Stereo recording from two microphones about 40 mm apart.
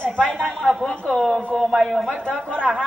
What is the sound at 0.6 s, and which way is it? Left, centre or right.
Speech, centre.